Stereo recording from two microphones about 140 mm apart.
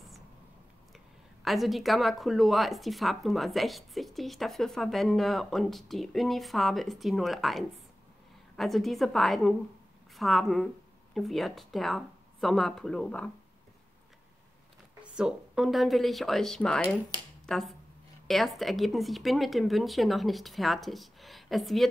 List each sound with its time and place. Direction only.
0.9 s speech: centre (ahead or behind)
15.1 s speech: 5° right (ahead or behind)